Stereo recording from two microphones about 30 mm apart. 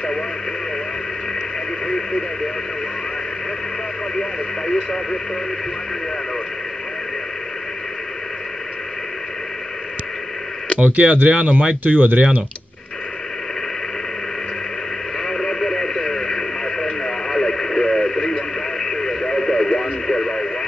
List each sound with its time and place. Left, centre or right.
10.8 s speech: right
11.1 s speech: right
15.2 s radio: centre